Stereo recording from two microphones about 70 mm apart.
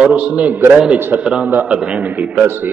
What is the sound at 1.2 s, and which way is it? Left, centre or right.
A man's voice, centre.